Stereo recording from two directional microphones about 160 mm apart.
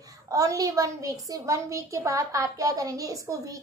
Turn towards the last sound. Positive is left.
turn(degrees=-20)  # may be behind; listen again after turning